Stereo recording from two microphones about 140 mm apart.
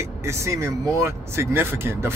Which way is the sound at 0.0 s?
20° right (ahead or behind).